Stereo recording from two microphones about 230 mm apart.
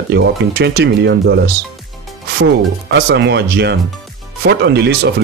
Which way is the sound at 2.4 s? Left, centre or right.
Right.